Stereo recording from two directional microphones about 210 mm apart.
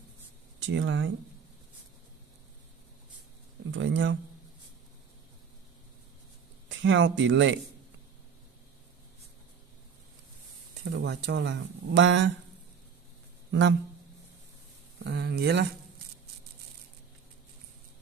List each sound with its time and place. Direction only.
0.6 s speech: 60° right (ahead or behind)
3.7 s speech: 60° right (ahead or behind)
6.7 s speech: 60° right (ahead or behind)
10.8 s speech: 55° right (ahead or behind)
13.5 s speech: 60° right (ahead or behind)
15.0 s speech: 50° right (ahead or behind)